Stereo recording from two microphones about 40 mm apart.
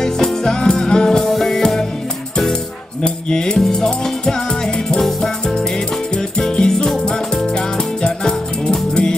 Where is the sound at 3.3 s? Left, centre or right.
Centre.